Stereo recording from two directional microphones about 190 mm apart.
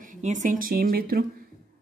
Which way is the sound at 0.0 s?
40° right (ahead or behind).